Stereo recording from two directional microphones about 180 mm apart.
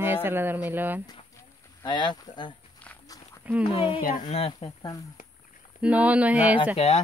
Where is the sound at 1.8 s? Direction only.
25° left (ahead or behind).